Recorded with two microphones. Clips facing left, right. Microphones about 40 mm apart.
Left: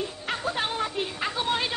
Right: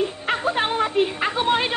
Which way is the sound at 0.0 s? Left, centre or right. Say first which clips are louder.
Right 7 dB; right.